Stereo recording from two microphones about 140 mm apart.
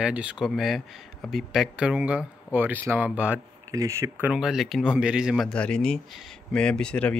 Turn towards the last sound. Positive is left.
turn(degrees=5)  # may be behind; listen again after turning